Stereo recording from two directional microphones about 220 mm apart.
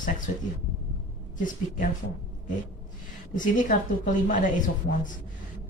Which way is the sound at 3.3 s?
35° left (ahead or behind).